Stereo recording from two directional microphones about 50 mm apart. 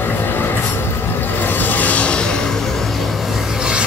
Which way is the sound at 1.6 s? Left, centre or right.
Left.